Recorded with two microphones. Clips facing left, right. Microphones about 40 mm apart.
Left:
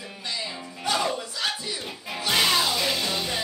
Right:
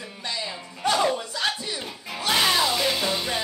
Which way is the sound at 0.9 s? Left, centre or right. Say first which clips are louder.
Right 2 dB; right.